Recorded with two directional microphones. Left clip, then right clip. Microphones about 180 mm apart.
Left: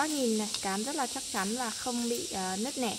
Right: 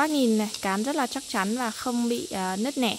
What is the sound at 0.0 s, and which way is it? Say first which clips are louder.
Speech: right 6 dB; 70° right (ahead or behind).